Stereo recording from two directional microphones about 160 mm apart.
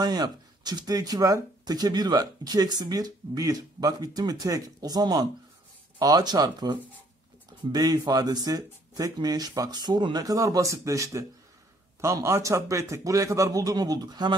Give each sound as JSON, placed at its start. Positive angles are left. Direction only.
{"t": 0.0, "sound": "speech", "side_deg": -25}